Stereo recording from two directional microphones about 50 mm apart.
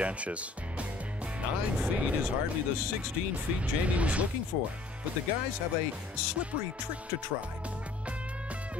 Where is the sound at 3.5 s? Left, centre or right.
Right.